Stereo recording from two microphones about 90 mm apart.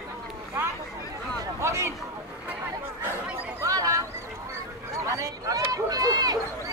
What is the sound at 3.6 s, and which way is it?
Chatter, 40° right (ahead or behind).